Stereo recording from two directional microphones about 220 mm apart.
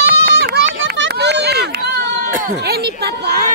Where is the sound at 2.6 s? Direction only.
45° right (ahead or behind).